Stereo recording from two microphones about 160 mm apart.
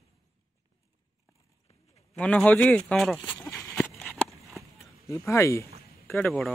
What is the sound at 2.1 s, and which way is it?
Speech, 10° left (ahead or behind).